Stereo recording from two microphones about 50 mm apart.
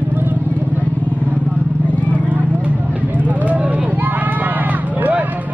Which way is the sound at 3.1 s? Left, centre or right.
Right.